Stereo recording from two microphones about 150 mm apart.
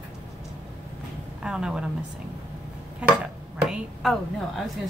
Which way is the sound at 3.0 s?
5° right (ahead or behind).